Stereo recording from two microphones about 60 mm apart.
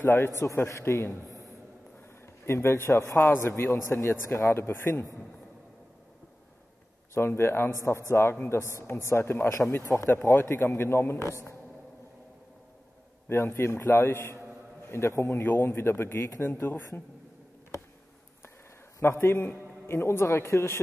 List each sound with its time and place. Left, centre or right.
0.0 s a man's voice: left
2.2 s a man's voice: left
3.4 s a man's voice: left
7.2 s a man's voice: left
8.5 s a woman's voice: left
9.8 s a woman's voice: left
10.1 s a man's voice: left
13.3 s a man's voice: left
18.9 s a man's voice: left